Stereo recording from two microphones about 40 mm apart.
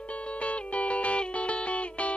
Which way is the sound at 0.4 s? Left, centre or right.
Left.